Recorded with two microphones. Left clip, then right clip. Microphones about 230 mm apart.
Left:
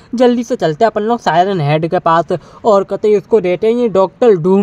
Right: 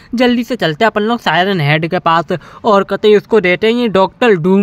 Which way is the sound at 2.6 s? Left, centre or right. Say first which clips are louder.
Even; right.